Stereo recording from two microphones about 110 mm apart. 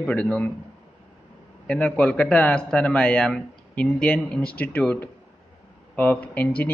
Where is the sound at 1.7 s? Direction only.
10° left (ahead or behind).